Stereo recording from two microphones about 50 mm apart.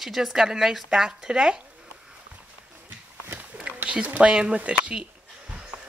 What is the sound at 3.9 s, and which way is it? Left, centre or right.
Speech, right.